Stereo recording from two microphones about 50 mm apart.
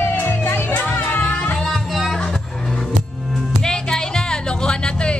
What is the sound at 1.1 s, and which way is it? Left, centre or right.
Music, left.